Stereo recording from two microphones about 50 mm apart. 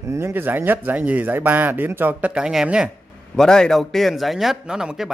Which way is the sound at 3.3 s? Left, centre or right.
Centre.